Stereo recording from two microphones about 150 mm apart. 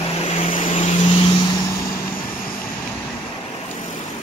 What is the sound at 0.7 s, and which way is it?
Vehicle, 50° left (ahead or behind).